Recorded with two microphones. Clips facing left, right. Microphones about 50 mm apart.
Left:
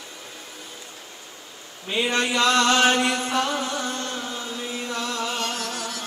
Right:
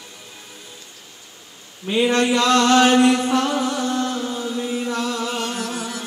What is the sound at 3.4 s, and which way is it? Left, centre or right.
Music, centre.